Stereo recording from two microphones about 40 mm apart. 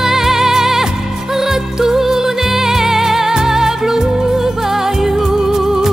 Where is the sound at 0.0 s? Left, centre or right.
Centre.